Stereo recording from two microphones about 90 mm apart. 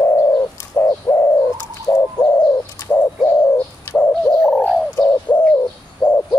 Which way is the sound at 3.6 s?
20° left (ahead or behind).